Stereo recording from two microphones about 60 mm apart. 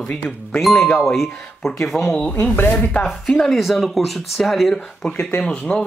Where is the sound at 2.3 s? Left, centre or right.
Left.